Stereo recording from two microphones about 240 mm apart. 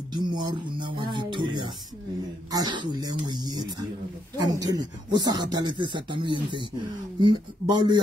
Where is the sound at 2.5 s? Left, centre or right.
Centre.